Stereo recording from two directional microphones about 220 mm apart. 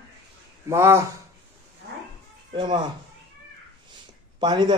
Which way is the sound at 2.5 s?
20° right (ahead or behind).